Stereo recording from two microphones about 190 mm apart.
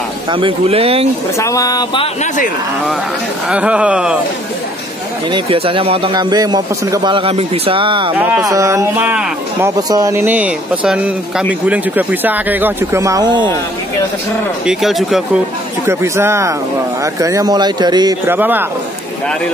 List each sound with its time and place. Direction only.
0.3 s speech: 25° right (ahead or behind)
1.4 s speech: 15° left (ahead or behind)
3.4 s speech: 5° right (ahead or behind)
5.3 s speech: 30° right (ahead or behind)
8.1 s speech: 10° right (ahead or behind)
9.8 s speech: 20° right (ahead or behind)
14.7 s speech: centre (ahead or behind)
15.9 s speech: 15° right (ahead or behind)